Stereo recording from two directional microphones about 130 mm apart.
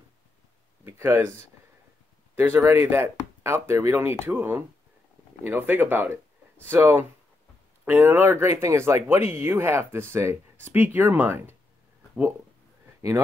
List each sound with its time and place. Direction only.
0.8 s speech: 20° right (ahead or behind)